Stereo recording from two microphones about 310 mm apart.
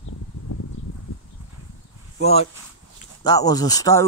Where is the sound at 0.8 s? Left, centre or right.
Left.